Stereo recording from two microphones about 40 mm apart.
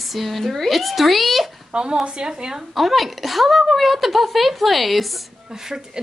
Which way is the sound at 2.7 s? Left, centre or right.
Centre.